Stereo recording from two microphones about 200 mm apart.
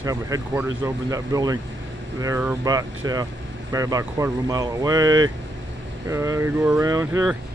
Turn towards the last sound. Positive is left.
turn(degrees=-15)  # may be behind; listen again after turning